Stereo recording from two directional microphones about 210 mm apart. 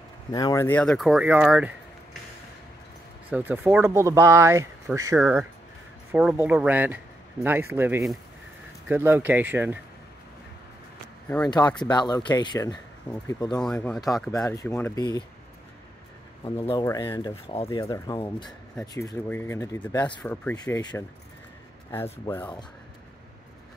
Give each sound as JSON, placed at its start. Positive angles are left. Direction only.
{"t": 0.3, "sound": "speech", "side_deg": 15}
{"t": 3.3, "sound": "speech", "side_deg": -5}
{"t": 11.2, "sound": "speech", "side_deg": 5}
{"t": 11.5, "sound": "speech", "side_deg": 20}
{"t": 13.6, "sound": "speech", "side_deg": 5}
{"t": 16.8, "sound": "speech", "side_deg": 15}
{"t": 22.2, "sound": "speech", "side_deg": 15}